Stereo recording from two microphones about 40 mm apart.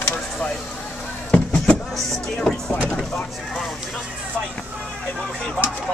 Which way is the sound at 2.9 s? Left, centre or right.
Centre.